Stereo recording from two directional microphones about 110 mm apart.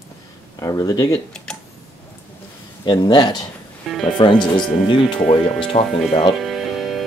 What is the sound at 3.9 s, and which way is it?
Speech, centre (ahead or behind).